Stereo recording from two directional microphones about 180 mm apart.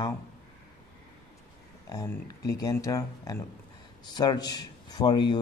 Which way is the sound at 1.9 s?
20° left (ahead or behind).